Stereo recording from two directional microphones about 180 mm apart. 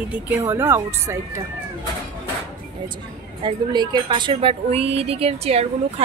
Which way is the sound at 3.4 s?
25° right (ahead or behind).